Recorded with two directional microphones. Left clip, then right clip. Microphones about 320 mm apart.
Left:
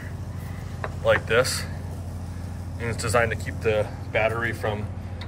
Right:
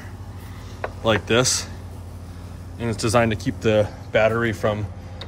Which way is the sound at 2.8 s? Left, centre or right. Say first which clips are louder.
Right 3 dB; centre.